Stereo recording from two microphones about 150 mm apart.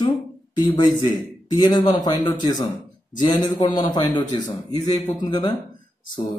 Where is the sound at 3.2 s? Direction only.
30° left (ahead or behind).